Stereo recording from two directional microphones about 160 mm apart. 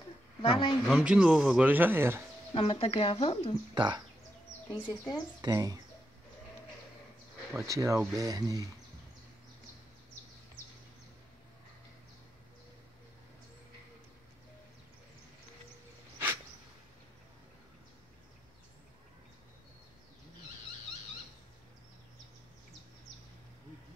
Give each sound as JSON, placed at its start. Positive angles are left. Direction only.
{"t": 0.4, "sound": "speech", "side_deg": 30}
{"t": 0.8, "sound": "speech", "side_deg": -5}
{"t": 2.5, "sound": "speech", "side_deg": 35}
{"t": 3.7, "sound": "speech", "side_deg": -30}
{"t": 4.7, "sound": "speech", "side_deg": 25}
{"t": 5.4, "sound": "speech", "side_deg": -25}
{"t": 7.5, "sound": "speech", "side_deg": -20}